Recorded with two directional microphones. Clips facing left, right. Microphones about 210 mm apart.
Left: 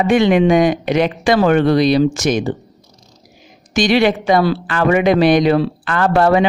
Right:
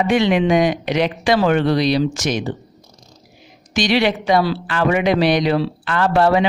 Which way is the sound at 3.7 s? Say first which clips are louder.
Left 4 dB; 50° left (ahead or behind).